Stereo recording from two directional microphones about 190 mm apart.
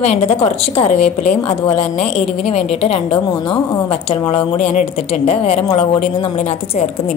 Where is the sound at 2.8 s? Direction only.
30° left (ahead or behind).